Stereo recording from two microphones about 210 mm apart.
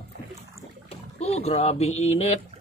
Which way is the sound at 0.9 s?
30° left (ahead or behind).